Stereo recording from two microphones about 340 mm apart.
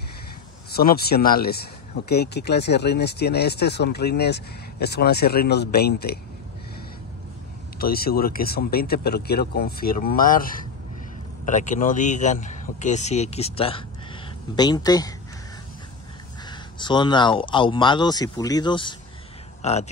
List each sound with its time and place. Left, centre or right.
0.7 s speech: left
7.8 s speech: left; by 15.1 s centre
16.4 s speech: centre